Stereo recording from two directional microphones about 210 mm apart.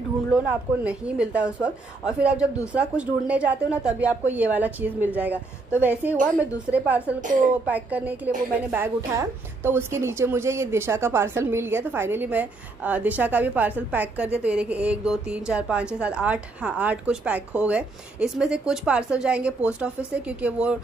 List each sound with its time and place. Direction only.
0.3 s a woman's voice: 5° right (ahead or behind)